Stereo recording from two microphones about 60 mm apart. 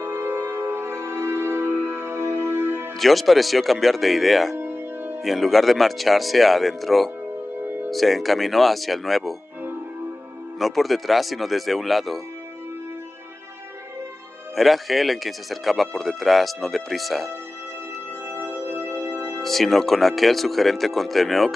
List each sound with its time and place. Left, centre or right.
0.0 s music: right
3.0 s speech: centre
4.6 s music: right
5.2 s speech: centre
10.6 s speech: centre
14.5 s speech: centre
18.3 s music: right
19.4 s speech: centre